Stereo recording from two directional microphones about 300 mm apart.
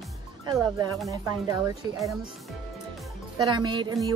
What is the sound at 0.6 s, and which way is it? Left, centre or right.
Music, centre.